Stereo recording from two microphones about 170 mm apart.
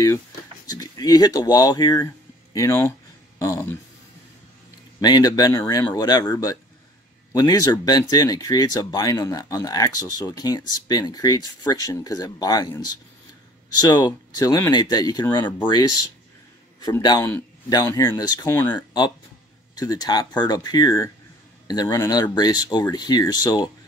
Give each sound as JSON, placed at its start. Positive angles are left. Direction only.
{"t": 0.7, "sound": "speech", "side_deg": 20}
{"t": 5.0, "sound": "speech", "side_deg": 25}